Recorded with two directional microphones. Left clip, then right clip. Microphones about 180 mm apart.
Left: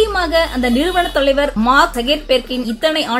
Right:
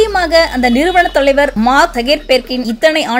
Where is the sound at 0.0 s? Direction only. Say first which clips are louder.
Right 4 dB; 20° right (ahead or behind).